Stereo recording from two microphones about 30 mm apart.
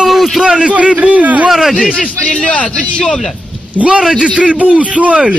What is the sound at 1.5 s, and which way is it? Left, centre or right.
Speech, centre.